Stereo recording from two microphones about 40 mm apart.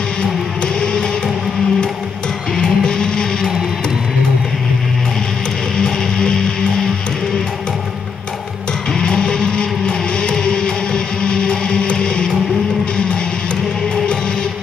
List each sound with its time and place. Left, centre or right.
0.7 s music: centre
2.6 s music: centre
8.9 s music: centre